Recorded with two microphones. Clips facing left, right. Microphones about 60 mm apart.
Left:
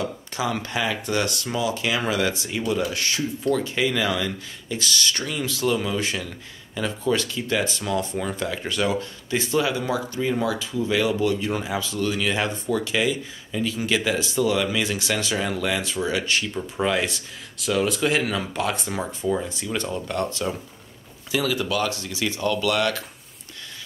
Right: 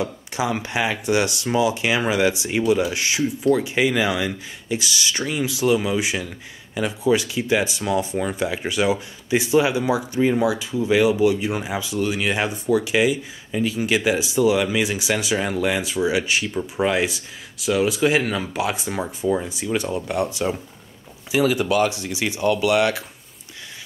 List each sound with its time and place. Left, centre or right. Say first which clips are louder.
0.0 s speech: right 2 dB; centre